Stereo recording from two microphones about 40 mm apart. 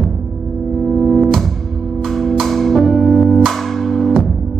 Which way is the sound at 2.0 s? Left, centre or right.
Centre.